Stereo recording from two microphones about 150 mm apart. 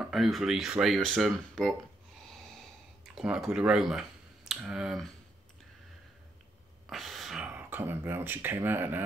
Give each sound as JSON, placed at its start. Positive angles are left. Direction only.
{"t": 0.0, "sound": "speech", "side_deg": 0}
{"t": 3.2, "sound": "speech", "side_deg": -5}
{"t": 6.9, "sound": "speech", "side_deg": 0}